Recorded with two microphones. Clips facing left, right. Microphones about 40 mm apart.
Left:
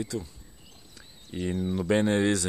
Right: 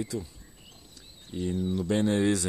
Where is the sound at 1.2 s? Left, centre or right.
Left.